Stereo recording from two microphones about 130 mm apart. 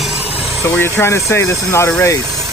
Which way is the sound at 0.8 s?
20° left (ahead or behind).